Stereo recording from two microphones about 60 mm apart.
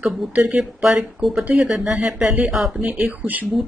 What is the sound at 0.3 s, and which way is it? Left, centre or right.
Speech, right.